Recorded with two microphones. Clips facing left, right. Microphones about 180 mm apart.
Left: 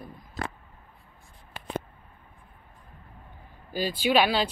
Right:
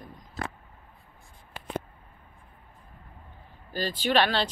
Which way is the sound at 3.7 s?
10° left (ahead or behind).